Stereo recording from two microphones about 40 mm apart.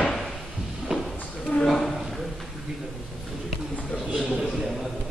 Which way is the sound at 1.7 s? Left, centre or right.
Centre.